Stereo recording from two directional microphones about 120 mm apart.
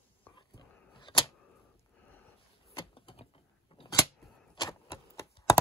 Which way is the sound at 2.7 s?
45° left (ahead or behind).